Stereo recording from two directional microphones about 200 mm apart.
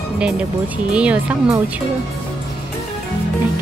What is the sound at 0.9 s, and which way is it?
Speech, 5° right (ahead or behind).